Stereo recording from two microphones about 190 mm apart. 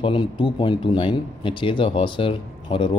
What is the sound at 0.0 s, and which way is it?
Speech, 25° left (ahead or behind).